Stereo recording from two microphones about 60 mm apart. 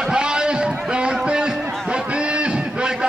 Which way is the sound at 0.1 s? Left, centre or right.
Centre.